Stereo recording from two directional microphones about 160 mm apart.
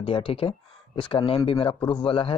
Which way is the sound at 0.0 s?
30° left (ahead or behind).